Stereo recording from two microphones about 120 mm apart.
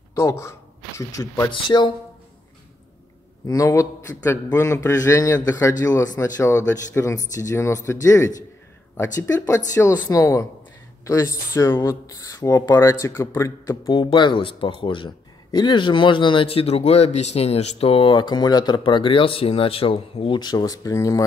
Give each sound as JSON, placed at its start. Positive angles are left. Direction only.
{"t": 0.1, "sound": "speech", "side_deg": 25}
{"t": 1.5, "sound": "speech", "side_deg": 40}
{"t": 3.4, "sound": "a man's voice", "side_deg": 25}
{"t": 13.8, "sound": "speech", "side_deg": 40}
{"t": 20.3, "sound": "a man's voice", "side_deg": 35}